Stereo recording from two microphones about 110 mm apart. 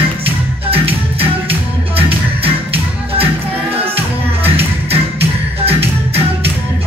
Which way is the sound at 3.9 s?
65° right (ahead or behind).